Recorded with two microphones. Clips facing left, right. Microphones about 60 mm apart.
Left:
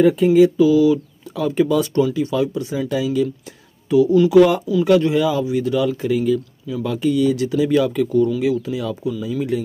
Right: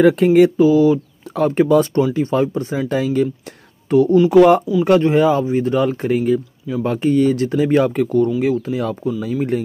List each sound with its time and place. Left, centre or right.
0.0 s speech: right
0.6 s speech: right